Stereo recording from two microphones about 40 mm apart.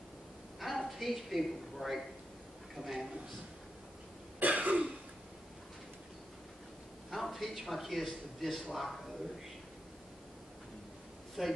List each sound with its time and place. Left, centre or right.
0.6 s a woman's voice: centre
4.4 s throat clearing: right
7.1 s a man's voice: centre
11.4 s a man's voice: centre